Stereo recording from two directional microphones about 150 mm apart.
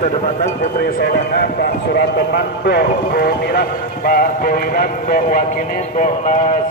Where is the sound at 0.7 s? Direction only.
75° left (ahead or behind).